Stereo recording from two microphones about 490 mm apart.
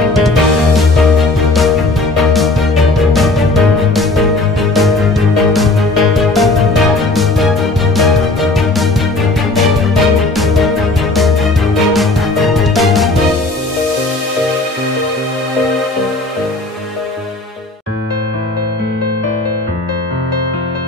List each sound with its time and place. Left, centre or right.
0.1 s music: centre
2.1 s music: centre
11.9 s music: centre